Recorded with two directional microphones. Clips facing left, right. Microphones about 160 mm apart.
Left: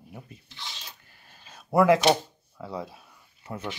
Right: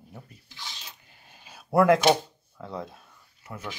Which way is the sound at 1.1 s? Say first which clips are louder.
Right 1 dB; 15° right (ahead or behind).